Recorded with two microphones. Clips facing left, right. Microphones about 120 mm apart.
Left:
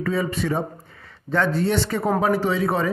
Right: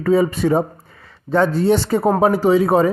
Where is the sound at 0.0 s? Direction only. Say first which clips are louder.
Right 8 dB; 35° right (ahead or behind).